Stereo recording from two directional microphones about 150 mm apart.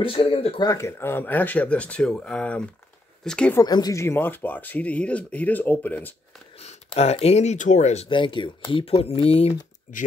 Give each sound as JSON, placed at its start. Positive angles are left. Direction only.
{"t": 0.0, "sound": "speech", "side_deg": 35}
{"t": 0.7, "sound": "speech", "side_deg": 20}
{"t": 3.5, "sound": "speech", "side_deg": 25}
{"t": 6.6, "sound": "speech", "side_deg": 45}
{"t": 9.9, "sound": "speech", "side_deg": 60}